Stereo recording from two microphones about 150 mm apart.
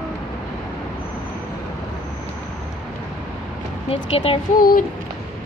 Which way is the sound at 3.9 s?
40° left (ahead or behind).